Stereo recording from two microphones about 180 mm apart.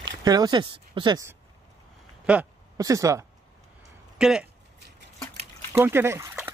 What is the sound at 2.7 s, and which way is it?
Speech, 20° right (ahead or behind).